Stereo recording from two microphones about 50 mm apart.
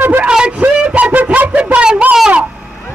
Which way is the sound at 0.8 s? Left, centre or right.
Right.